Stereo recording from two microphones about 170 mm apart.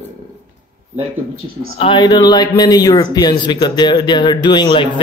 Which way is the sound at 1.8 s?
25° left (ahead or behind).